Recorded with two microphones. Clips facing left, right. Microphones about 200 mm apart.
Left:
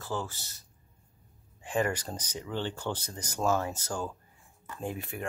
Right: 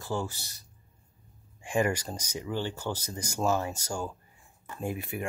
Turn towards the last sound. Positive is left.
turn(degrees=-10)  # may be behind; listen again after turning